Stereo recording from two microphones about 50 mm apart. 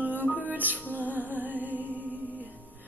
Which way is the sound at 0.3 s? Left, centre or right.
Right.